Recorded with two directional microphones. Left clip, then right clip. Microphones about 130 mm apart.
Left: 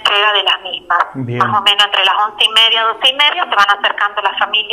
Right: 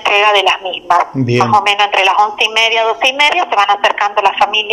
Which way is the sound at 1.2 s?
25° right (ahead or behind).